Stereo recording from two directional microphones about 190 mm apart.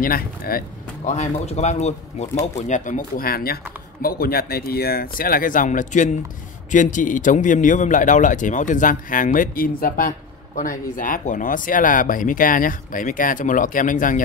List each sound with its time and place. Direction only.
0.0 s speech: 50° left (ahead or behind)
1.1 s a man's voice: 35° left (ahead or behind)